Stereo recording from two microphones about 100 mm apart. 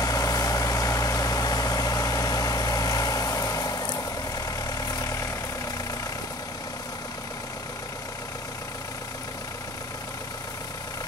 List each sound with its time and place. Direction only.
0.0 s vehicle: 40° left (ahead or behind)